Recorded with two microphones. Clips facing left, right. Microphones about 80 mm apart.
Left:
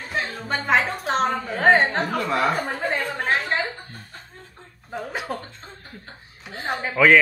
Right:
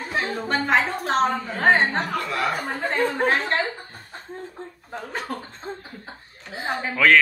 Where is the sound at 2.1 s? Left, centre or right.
Left.